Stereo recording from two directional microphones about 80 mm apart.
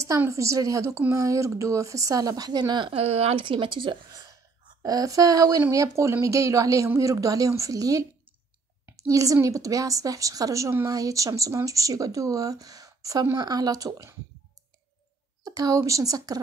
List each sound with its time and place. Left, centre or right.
0.3 s a woman's voice: right
3.4 s speech: right
4.8 s a woman's voice: right
15.4 s a woman's voice: right